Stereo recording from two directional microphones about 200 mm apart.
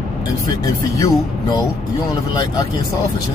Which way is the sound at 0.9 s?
15° left (ahead or behind).